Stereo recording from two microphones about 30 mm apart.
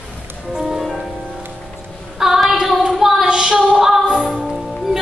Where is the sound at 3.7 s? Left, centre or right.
Centre.